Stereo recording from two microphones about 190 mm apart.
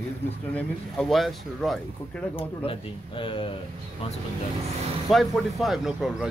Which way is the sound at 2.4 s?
30° left (ahead or behind).